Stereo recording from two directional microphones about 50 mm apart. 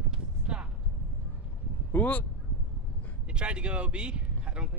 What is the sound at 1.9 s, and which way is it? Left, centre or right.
Speech, left.